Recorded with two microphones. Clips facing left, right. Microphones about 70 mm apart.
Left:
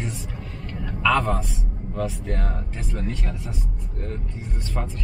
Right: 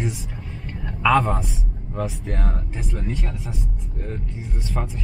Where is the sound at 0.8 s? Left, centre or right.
Centre.